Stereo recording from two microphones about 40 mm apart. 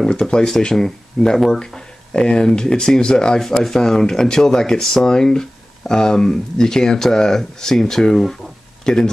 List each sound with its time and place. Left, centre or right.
0.1 s speech: centre